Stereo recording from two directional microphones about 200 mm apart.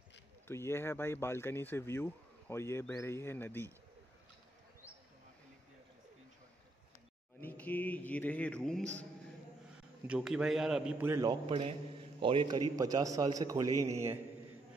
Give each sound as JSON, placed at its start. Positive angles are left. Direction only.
{"t": 0.5, "sound": "speech", "side_deg": 10}
{"t": 7.3, "sound": "a man's voice", "side_deg": 10}
{"t": 11.4, "sound": "a man's voice", "side_deg": -25}